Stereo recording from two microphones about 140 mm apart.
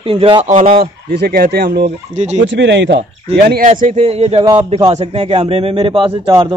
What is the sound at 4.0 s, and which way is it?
Speech, 45° right (ahead or behind).